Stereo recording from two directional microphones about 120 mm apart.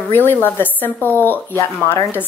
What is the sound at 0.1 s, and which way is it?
Speech, 15° left (ahead or behind).